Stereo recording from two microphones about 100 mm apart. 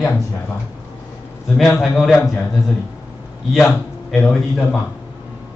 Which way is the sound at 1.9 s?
Centre (ahead or behind).